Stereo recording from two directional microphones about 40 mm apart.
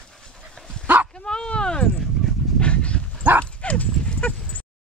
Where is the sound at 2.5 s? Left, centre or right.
Left.